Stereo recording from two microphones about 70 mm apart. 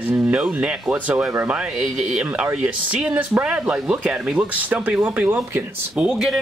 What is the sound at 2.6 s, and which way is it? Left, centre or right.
Speech, centre.